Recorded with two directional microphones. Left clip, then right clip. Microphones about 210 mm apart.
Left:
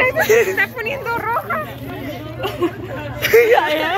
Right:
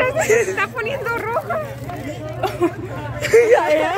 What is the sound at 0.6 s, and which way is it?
Speech, 50° right (ahead or behind).